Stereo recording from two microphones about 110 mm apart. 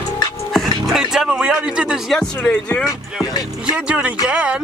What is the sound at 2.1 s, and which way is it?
Speech, 10° left (ahead or behind).